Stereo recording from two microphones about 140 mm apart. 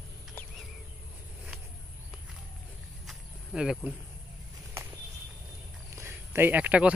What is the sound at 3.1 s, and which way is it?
Cricket, 5° right (ahead or behind).